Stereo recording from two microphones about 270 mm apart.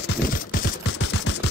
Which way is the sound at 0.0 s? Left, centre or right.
Left.